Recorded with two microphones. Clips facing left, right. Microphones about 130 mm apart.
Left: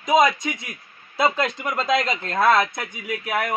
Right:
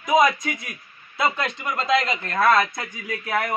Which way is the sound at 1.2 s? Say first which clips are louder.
Left 3 dB; 35° left (ahead or behind).